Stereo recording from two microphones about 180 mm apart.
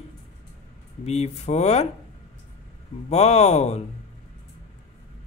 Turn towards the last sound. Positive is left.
turn(degrees=35)  # may be behind; listen again after turning